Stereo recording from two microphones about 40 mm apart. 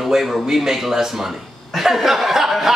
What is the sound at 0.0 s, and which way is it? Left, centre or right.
A man's voice, centre.